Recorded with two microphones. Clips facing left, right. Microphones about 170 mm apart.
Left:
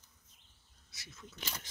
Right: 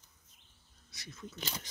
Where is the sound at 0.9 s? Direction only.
5° left (ahead or behind).